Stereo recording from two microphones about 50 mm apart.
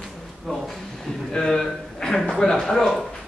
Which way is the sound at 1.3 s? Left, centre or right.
Centre.